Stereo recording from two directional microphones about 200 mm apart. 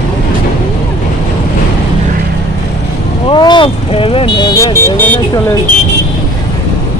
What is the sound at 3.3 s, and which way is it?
Vehicle, 25° left (ahead or behind).